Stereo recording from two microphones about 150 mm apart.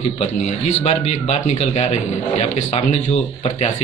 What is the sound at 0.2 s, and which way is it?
A man's voice, 45° left (ahead or behind).